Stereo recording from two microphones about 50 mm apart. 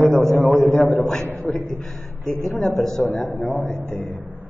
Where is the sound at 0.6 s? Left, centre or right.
Left.